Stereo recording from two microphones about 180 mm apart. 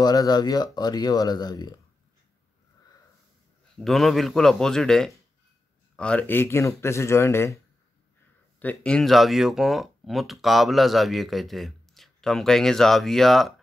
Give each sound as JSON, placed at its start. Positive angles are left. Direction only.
{"t": 0.0, "sound": "speech", "side_deg": 20}
{"t": 3.7, "sound": "speech", "side_deg": 0}